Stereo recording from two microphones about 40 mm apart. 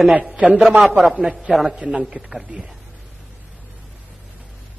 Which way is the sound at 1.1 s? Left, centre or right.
Centre.